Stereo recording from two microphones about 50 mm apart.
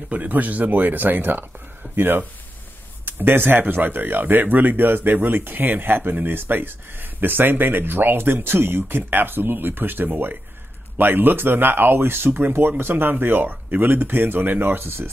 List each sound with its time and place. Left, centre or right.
0.1 s speech: right